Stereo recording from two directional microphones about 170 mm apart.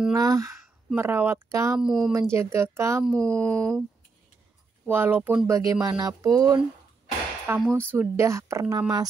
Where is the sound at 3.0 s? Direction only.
5° left (ahead or behind).